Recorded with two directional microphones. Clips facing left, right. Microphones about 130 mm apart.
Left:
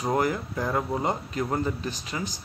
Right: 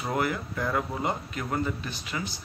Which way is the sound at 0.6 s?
15° left (ahead or behind).